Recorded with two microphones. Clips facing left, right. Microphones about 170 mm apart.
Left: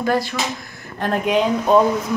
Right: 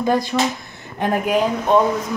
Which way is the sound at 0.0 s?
20° right (ahead or behind).